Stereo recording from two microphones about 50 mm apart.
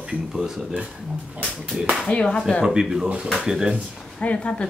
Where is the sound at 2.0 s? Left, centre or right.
Left.